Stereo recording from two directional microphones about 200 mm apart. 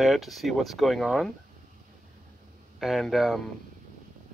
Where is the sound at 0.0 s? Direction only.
Centre (ahead or behind).